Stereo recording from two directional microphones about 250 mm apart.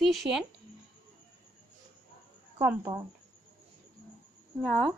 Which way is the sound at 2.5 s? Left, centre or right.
Centre.